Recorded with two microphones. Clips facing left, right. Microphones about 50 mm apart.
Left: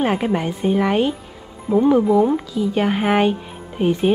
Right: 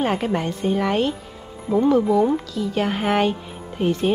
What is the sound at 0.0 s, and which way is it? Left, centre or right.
Speech, centre.